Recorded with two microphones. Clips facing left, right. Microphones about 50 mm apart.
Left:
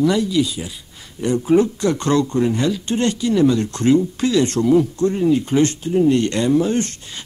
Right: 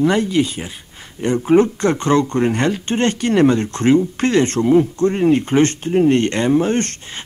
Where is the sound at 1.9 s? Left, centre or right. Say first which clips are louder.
Right 2 dB; right.